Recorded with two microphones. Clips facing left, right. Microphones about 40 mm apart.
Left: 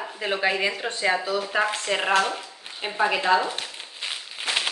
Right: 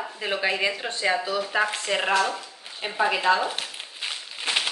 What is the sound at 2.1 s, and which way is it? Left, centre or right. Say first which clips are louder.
Speech: left 2 dB; left.